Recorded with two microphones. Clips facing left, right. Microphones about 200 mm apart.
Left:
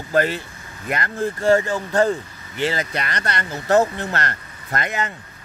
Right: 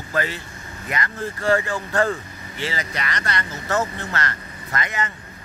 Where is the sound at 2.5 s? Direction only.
55° left (ahead or behind).